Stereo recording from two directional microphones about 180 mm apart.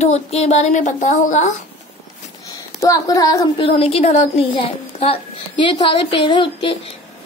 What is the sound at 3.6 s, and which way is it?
A woman's voice, 35° left (ahead or behind).